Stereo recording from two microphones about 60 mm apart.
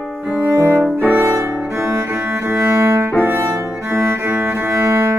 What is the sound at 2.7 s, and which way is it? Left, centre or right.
Music, right.